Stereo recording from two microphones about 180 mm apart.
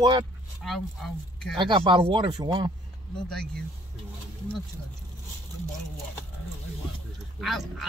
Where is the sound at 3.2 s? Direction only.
5° left (ahead or behind).